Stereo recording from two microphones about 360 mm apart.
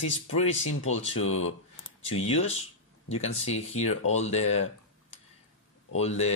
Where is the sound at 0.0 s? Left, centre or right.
Left.